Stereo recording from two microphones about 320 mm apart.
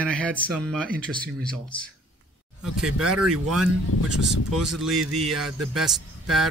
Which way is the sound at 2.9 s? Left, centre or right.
Right.